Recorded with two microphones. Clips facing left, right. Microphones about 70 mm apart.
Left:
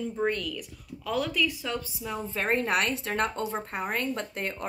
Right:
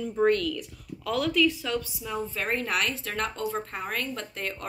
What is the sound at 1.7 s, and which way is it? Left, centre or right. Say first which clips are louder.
Speech: right 2 dB; left.